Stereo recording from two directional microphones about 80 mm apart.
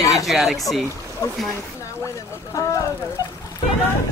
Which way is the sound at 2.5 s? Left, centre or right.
Left.